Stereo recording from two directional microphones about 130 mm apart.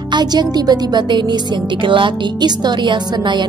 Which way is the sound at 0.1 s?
35° right (ahead or behind).